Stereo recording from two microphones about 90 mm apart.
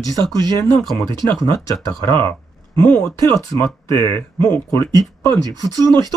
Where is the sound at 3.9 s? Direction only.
30° left (ahead or behind).